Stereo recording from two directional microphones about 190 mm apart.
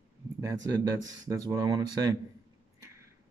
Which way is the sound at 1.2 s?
20° right (ahead or behind).